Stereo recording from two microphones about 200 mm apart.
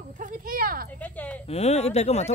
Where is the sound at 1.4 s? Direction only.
30° left (ahead or behind).